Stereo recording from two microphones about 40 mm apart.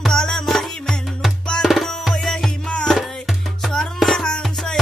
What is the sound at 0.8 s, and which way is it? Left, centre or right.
Music, centre.